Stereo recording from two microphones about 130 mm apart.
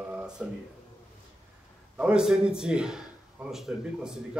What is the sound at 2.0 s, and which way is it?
A man's voice, 5° right (ahead or behind).